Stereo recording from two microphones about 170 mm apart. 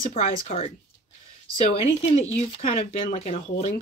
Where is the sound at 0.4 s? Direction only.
35° left (ahead or behind).